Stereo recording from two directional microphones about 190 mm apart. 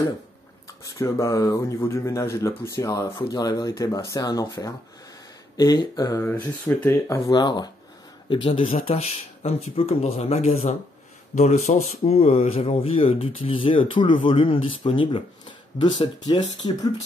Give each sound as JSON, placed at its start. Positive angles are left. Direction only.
{"t": 0.7, "sound": "speech", "side_deg": 15}
{"t": 8.5, "sound": "speech", "side_deg": 30}